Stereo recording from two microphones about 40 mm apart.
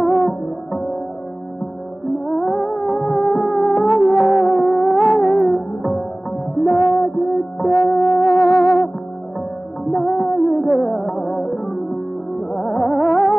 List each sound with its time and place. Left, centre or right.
0.0 s music: centre
2.2 s music: centre
4.1 s music: centre
4.6 s music: centre
6.6 s music: centre
8.3 s music: left
9.9 s music: centre
13.0 s music: centre